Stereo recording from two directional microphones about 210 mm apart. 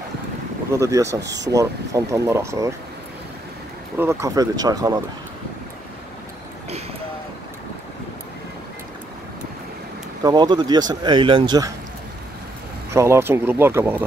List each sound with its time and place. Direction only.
0.7 s speech: 15° right (ahead or behind)
4.0 s speech: 15° right (ahead or behind)
10.2 s speech: 20° right (ahead or behind)
12.9 s speech: 10° right (ahead or behind)